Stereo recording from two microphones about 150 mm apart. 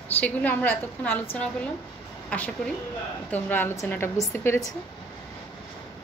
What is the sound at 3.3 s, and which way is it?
A woman's voice, 15° left (ahead or behind).